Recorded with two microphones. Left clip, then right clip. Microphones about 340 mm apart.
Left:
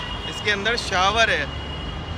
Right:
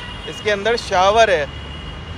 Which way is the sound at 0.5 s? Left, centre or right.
Centre.